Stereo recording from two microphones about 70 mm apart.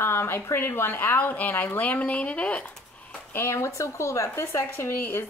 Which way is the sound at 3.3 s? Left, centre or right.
Left.